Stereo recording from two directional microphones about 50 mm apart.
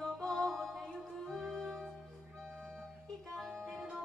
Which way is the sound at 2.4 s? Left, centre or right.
Right.